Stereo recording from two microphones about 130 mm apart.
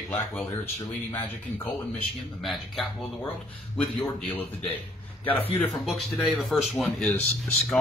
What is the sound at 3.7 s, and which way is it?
Speech, 10° left (ahead or behind).